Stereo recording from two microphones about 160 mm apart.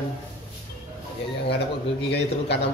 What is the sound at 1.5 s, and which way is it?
A man's voice, 90° left.